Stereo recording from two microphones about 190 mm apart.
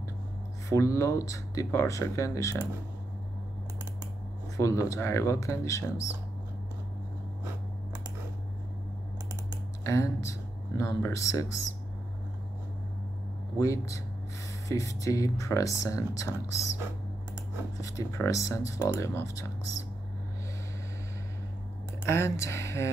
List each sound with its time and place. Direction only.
0.7 s speech: 15° left (ahead or behind)
4.6 s speech: 15° left (ahead or behind)
9.8 s speech: 15° left (ahead or behind)
13.6 s speech: 15° left (ahead or behind)
17.7 s speech: 15° left (ahead or behind)
22.0 s speech: 15° left (ahead or behind)